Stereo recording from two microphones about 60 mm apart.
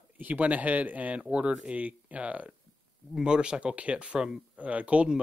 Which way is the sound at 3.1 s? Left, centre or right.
Centre.